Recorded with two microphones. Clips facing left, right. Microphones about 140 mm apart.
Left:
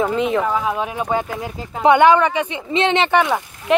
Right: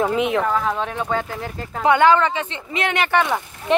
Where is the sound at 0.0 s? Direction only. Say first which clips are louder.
Left 1 dB; centre (ahead or behind); by 3.3 s 15° left (ahead or behind).